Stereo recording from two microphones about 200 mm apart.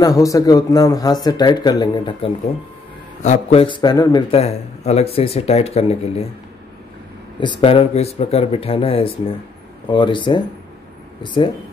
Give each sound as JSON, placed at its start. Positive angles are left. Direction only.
{"t": 0.0, "sound": "speech", "side_deg": 15}
{"t": 3.2, "sound": "a man's voice", "side_deg": 35}
{"t": 7.3, "sound": "speech", "side_deg": 25}